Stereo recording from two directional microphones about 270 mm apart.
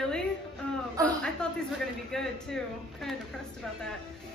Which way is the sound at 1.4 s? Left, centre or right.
Centre.